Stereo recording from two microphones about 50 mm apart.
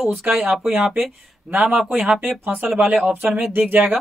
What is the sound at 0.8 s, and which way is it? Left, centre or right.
Speech, centre.